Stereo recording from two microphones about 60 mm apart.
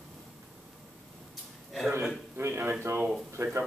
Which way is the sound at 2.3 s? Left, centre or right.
Right.